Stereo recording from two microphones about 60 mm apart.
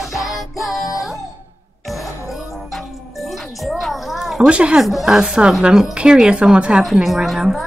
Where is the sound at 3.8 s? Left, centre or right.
Centre.